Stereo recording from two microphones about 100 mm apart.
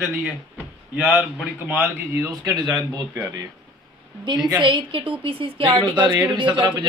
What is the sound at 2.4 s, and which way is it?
Speech, 45° right (ahead or behind).